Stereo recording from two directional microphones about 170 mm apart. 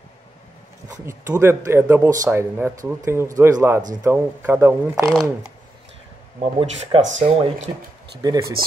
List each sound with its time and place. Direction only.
1.0 s speech: 15° right (ahead or behind)
6.4 s speech: 35° right (ahead or behind)
8.2 s speech: 20° right (ahead or behind)